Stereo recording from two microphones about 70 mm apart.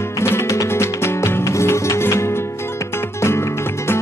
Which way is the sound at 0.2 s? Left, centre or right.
Left.